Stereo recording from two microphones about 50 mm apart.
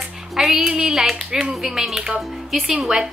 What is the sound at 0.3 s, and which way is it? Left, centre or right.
Speech, centre.